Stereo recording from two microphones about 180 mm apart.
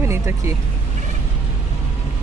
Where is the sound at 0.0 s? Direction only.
15° right (ahead or behind).